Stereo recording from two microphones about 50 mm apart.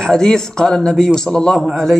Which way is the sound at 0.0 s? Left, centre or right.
Centre.